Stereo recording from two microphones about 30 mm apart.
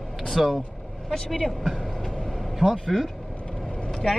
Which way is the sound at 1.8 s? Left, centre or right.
Centre.